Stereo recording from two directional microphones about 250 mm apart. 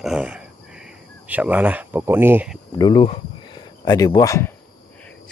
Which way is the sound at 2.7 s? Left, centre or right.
Centre.